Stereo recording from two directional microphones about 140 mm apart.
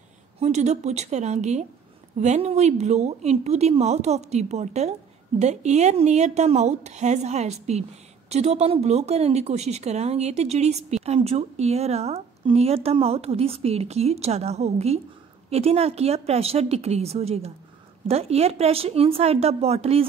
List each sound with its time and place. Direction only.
0.4 s speech: 55° right (ahead or behind)